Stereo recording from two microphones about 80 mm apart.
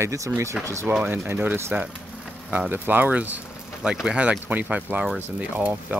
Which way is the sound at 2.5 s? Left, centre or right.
Right.